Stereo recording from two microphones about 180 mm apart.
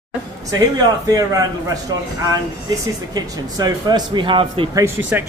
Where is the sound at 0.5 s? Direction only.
20° right (ahead or behind).